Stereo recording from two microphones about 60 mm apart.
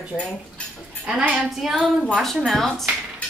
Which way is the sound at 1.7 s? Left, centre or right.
Centre.